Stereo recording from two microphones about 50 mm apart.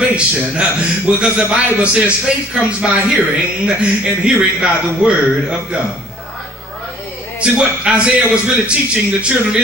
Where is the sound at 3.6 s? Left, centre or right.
Centre.